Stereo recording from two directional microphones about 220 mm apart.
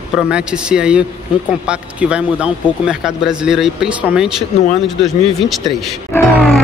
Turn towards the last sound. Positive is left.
turn(degrees=5)  # may be behind; listen again after turning